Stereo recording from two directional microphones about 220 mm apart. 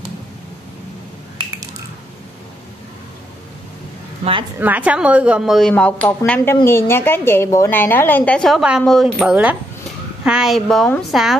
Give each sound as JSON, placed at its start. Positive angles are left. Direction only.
{"t": 4.2, "sound": "a woman's voice", "side_deg": -25}
{"t": 4.6, "sound": "speech", "side_deg": -5}